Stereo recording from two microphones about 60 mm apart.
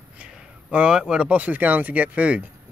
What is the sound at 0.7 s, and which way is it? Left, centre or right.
Speech, centre.